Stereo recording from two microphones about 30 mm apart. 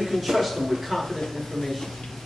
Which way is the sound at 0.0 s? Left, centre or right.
Centre.